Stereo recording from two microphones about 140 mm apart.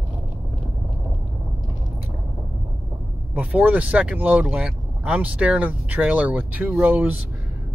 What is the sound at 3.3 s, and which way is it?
Speech, 10° right (ahead or behind).